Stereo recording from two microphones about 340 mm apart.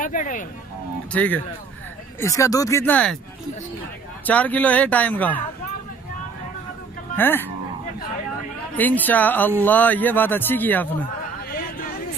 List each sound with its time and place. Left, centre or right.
0.0 s speech: left
1.1 s speech: centre
4.3 s speech: centre
7.2 s speech: centre
8.7 s speech: centre